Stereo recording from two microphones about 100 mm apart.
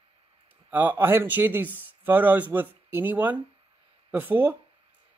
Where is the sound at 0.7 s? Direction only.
15° right (ahead or behind).